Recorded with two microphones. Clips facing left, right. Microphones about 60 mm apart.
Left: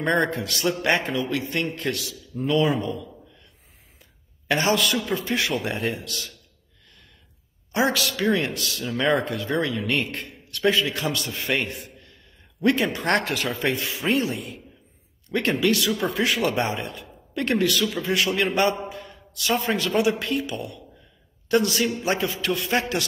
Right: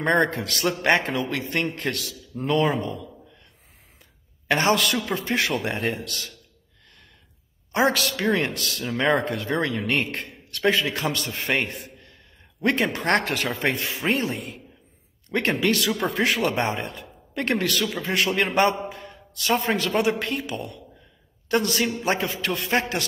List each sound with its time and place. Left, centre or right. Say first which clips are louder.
0.0 s a man's voice: right 1 dB; right
4.5 s a man's voice: right 1 dB; right
4.7 s a man's voice: left 1 dB; right
5.0 s a man's voice: even; right
7.7 s a man's voice: right 1 dB; right